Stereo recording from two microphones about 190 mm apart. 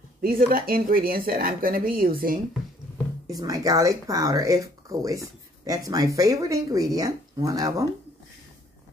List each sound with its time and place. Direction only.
0.2 s speech: 50° right (ahead or behind)
3.3 s speech: 20° right (ahead or behind)